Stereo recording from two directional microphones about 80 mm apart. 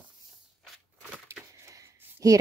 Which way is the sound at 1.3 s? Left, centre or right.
Right.